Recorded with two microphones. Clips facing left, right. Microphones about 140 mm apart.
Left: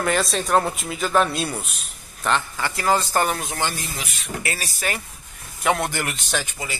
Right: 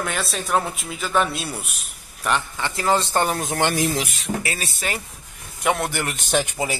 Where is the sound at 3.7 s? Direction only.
90° right.